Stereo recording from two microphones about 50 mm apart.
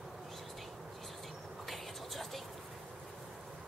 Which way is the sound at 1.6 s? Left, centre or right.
Centre.